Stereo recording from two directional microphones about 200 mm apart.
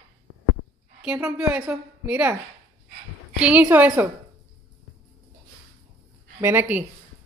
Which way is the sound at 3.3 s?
5° right (ahead or behind).